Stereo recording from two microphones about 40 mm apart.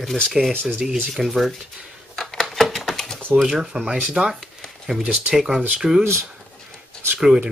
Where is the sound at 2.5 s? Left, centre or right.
Centre.